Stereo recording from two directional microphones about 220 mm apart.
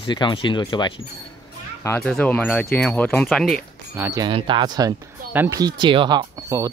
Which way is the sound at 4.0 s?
15° right (ahead or behind).